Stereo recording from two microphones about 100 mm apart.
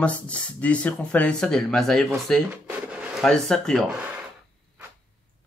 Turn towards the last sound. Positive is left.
turn(degrees=5)  # may be behind; listen again after turning